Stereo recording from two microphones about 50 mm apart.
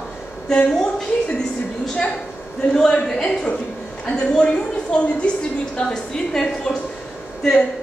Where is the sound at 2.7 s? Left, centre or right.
Centre.